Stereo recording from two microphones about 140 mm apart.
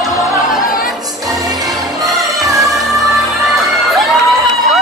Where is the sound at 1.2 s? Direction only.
25° right (ahead or behind).